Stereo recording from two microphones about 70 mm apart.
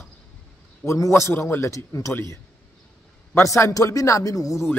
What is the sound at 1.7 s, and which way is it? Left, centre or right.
Speech, left.